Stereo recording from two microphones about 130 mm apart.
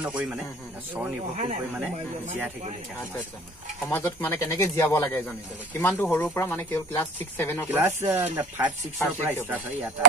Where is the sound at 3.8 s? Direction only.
20° left (ahead or behind).